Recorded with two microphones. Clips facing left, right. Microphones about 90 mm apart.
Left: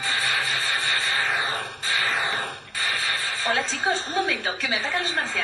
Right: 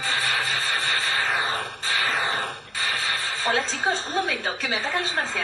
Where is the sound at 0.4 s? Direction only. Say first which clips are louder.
Even; 35° right (ahead or behind).